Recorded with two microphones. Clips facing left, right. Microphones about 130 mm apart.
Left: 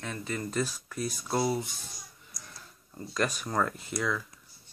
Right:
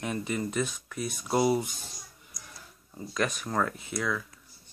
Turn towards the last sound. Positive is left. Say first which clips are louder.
# even
turn(degrees=0)  # may be behind; listen again after turning